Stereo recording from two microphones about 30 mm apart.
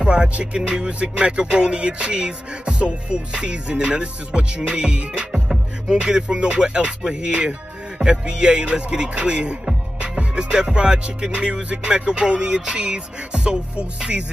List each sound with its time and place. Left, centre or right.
0.0 s music: right